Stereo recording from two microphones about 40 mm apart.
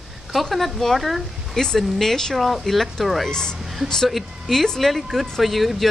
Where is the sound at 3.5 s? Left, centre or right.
Centre.